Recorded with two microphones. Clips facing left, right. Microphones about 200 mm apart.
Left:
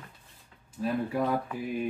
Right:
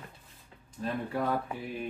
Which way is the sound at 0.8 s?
5° left (ahead or behind).